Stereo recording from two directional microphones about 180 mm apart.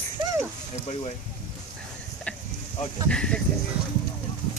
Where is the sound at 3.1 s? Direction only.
5° left (ahead or behind).